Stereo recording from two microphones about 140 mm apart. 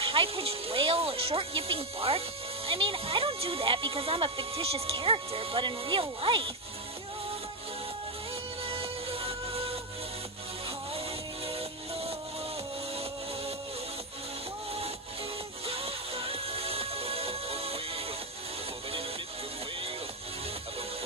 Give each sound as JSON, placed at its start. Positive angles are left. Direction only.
{"t": 0.0, "sound": "speech", "side_deg": -40}
{"t": 8.6, "sound": "music", "side_deg": -40}
{"t": 11.4, "sound": "music", "side_deg": -45}
{"t": 15.6, "sound": "music", "side_deg": -45}